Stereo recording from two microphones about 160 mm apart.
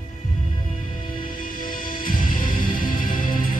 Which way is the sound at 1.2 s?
60° left (ahead or behind).